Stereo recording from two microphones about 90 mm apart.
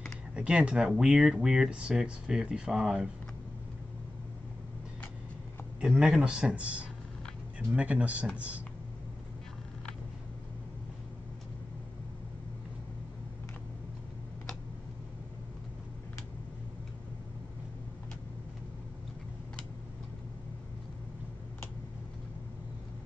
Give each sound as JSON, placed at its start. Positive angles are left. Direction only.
{"t": 0.3, "sound": "speech", "side_deg": -10}
{"t": 5.8, "sound": "speech", "side_deg": -5}